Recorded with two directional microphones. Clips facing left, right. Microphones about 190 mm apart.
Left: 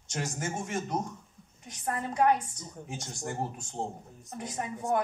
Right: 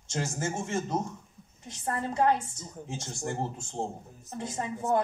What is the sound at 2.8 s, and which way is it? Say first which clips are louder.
Speech: right 3 dB; 25° right (ahead or behind).